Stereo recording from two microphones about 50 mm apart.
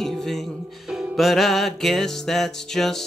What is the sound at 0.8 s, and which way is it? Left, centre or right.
Music, centre.